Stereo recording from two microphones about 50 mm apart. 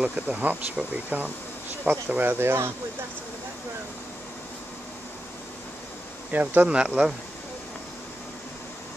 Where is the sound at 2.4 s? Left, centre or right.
Right.